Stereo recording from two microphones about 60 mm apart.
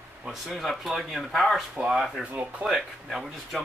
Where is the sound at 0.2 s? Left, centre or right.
Centre.